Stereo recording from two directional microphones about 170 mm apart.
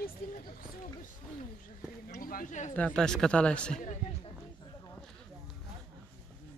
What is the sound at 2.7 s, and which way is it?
Speech, 5° left (ahead or behind).